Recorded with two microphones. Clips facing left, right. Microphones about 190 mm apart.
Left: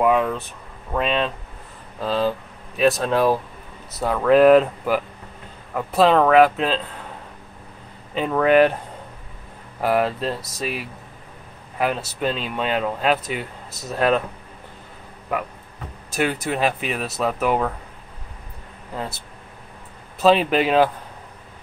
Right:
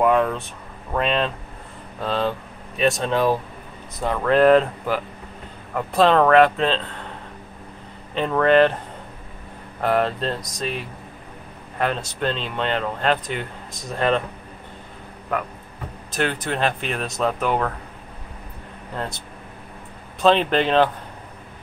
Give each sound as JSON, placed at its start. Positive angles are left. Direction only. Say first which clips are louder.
{"t": 0.0, "sound": "speech", "louder": "even", "side_deg": 5}
{"t": 8.1, "sound": "speech", "louder": "even", "side_deg": 5}
{"t": 9.8, "sound": "speech", "louder": "even", "side_deg": 5}
{"t": 15.3, "sound": "speech", "louder": "even", "side_deg": 10}
{"t": 18.9, "sound": "speech", "louder": "even", "side_deg": 5}